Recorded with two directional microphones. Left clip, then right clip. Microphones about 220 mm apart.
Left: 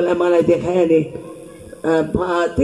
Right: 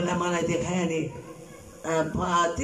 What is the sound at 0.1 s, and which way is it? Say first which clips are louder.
A man's voice: left 12 dB; 55° left (ahead or behind).